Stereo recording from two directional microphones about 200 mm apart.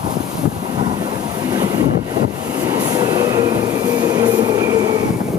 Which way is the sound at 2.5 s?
20° right (ahead or behind).